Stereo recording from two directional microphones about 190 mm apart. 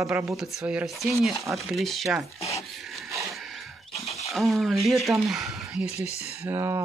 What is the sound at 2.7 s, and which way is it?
Wood, centre (ahead or behind).